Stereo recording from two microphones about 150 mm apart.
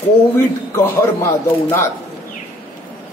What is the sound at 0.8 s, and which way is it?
A man's voice, 20° left (ahead or behind).